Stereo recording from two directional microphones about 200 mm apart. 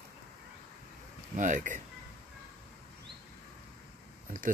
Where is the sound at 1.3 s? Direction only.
40° right (ahead or behind).